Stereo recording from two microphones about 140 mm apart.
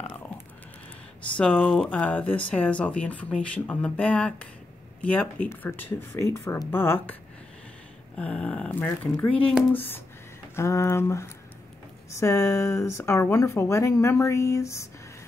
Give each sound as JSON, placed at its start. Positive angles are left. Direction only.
{"t": 1.3, "sound": "speech", "side_deg": 10}
{"t": 8.2, "sound": "speech", "side_deg": 10}